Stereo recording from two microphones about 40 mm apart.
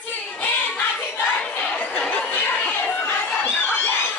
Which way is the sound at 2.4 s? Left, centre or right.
Left.